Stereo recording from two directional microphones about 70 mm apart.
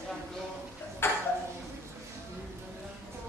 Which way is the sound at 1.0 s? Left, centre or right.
Left.